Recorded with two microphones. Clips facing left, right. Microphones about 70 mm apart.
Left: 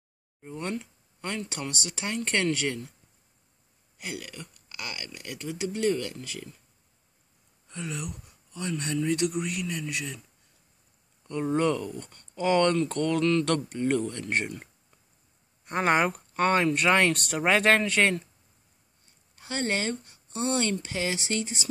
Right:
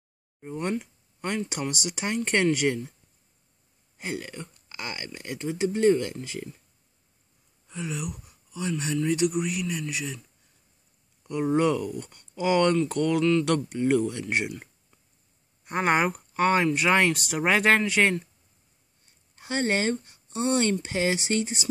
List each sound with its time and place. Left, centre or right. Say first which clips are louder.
0.4 s speech: right 4 dB; centre
4.0 s speech: right 4 dB; right
7.6 s speech: right 3 dB; centre
11.2 s speech: right 2 dB; centre
19.3 s speech: right 3 dB; right